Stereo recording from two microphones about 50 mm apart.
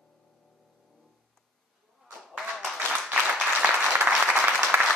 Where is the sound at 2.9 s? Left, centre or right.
Right.